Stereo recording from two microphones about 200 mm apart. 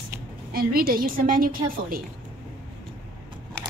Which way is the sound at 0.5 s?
45° right (ahead or behind).